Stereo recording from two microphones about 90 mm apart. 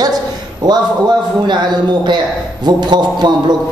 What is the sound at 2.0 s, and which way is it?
A man's voice, 55° right (ahead or behind).